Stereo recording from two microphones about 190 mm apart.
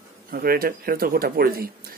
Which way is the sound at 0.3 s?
50° right (ahead or behind).